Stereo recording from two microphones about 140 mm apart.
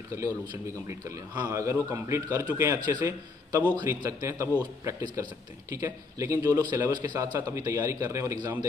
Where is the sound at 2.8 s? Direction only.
25° right (ahead or behind).